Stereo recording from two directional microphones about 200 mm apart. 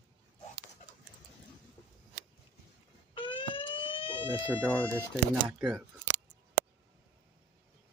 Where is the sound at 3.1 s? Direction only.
25° left (ahead or behind).